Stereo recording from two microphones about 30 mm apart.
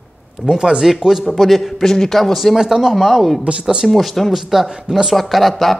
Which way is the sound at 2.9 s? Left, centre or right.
Centre.